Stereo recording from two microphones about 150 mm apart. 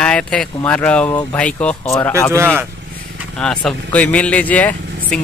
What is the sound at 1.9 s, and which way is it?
Speech, 20° left (ahead or behind).